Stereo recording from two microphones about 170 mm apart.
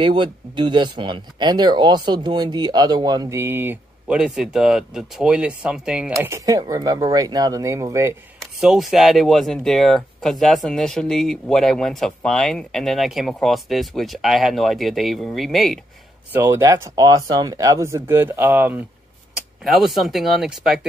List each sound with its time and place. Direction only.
0.0 s speech: 25° right (ahead or behind); by 6.1 s 5° right (ahead or behind)
6.1 s speech: 15° right (ahead or behind)
8.4 s speech: centre (ahead or behind)
16.3 s speech: 10° right (ahead or behind)